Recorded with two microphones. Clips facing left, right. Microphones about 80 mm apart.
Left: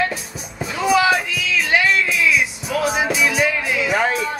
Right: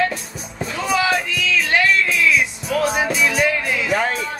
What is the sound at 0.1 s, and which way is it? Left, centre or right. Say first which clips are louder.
Music: even; centre.